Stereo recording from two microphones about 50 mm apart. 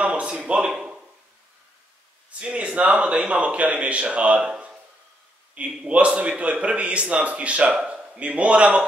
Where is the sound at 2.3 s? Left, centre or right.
Right.